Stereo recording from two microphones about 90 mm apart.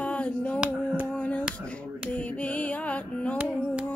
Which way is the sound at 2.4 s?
15° left (ahead or behind).